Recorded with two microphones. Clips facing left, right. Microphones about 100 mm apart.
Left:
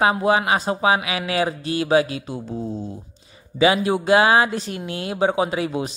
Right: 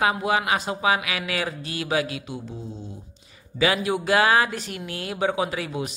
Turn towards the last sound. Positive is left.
turn(degrees=30)  # may be behind; listen again after turning